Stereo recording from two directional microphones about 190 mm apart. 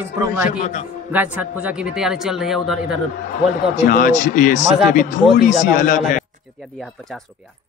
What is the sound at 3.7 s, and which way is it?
A man's voice, 45° left (ahead or behind).